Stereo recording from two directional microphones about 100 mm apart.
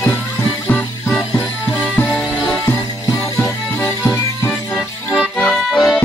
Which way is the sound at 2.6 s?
30° left (ahead or behind).